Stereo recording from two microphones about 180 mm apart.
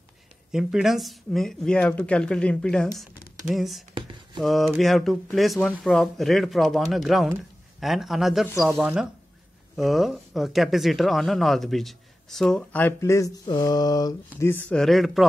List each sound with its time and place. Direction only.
0.5 s speech: 5° right (ahead or behind)
3.9 s a sound: 25° right (ahead or behind)
4.4 s speech: centre (ahead or behind)